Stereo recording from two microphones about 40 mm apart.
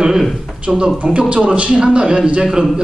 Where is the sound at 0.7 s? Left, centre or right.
Centre.